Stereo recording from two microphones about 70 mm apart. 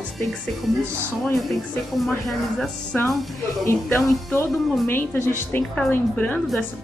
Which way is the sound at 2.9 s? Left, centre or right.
Left.